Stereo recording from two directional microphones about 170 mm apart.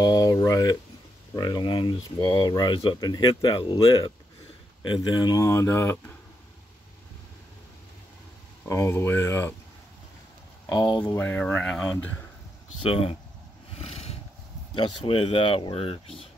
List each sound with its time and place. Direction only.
0.0 s a sound: 25° left (ahead or behind)
1.3 s speech: 25° left (ahead or behind)
8.6 s speech: 15° left (ahead or behind)
10.7 s speech: 25° left (ahead or behind)
11.1 s speech: 10° left (ahead or behind)
12.8 s speech: 35° left (ahead or behind)
13.7 s a sound: 40° left (ahead or behind)
14.8 s speech: 30° left (ahead or behind)